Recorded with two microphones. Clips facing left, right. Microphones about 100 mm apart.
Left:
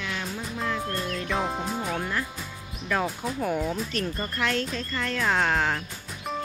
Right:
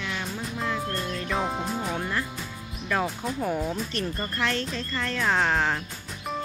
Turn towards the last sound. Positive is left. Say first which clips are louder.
# even
turn(degrees=0)  # may be behind; listen again after turning